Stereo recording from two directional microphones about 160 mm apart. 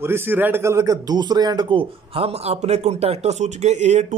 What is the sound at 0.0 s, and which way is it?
Speech, 15° right (ahead or behind).